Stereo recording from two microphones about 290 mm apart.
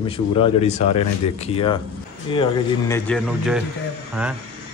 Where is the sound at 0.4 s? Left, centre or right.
Left.